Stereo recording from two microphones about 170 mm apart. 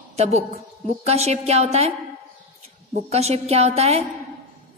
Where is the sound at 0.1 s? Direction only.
40° right (ahead or behind).